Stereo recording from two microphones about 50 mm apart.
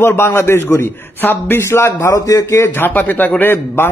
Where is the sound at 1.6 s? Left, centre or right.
Left.